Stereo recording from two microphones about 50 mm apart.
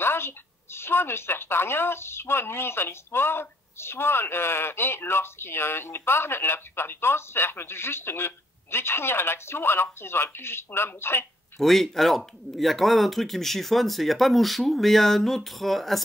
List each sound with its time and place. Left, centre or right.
0.0 s a sound: left
0.7 s speech: left
11.6 s speech: centre